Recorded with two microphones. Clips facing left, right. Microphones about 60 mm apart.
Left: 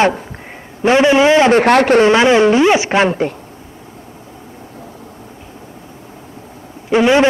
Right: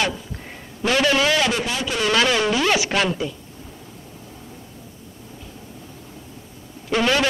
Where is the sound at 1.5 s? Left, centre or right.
Left.